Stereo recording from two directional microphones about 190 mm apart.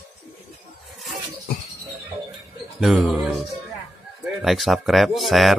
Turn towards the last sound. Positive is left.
turn(degrees=0)  # may be behind; listen again after turning